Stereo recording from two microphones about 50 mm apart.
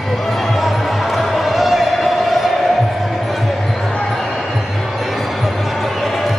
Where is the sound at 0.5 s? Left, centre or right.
Centre.